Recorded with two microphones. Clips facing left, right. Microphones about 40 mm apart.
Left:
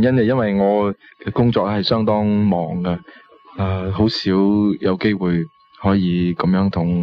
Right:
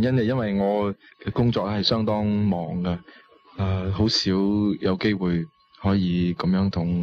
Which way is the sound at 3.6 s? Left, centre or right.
Centre.